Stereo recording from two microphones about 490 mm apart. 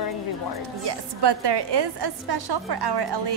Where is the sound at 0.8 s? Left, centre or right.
Right.